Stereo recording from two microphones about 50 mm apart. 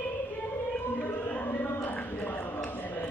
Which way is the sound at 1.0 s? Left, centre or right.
Left.